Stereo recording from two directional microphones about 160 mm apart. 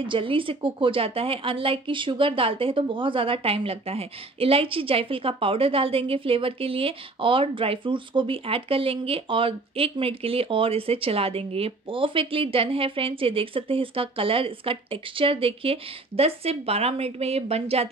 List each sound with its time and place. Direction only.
0.0 s a woman's voice: 30° right (ahead or behind)